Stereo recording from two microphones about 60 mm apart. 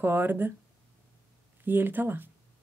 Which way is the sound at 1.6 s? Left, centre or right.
Right.